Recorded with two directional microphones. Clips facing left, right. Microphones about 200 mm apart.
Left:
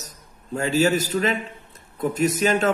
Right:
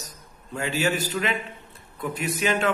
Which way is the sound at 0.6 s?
40° left (ahead or behind).